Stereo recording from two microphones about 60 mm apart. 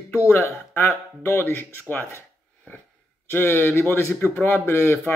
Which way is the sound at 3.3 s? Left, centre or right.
Left.